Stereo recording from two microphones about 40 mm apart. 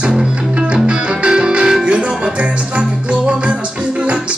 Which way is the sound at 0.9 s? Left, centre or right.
Right.